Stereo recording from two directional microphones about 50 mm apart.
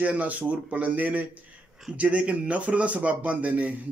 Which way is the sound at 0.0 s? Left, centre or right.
Right.